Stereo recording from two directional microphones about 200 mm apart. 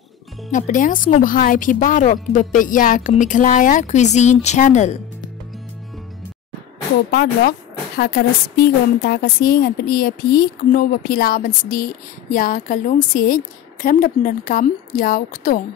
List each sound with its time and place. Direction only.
0.5 s a woman's voice: 40° left (ahead or behind)
7.1 s a woman's voice: 55° left (ahead or behind)